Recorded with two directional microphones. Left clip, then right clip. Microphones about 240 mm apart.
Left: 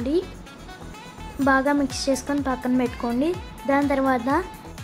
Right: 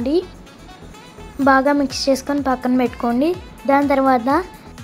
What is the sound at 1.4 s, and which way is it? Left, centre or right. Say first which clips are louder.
A woman's voice: right 6 dB; centre.